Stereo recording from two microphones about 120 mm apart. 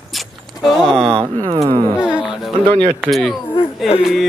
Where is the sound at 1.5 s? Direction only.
50° right (ahead or behind).